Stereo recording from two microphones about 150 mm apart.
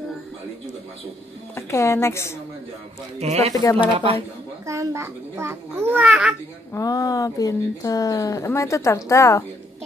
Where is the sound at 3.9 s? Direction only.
40° right (ahead or behind).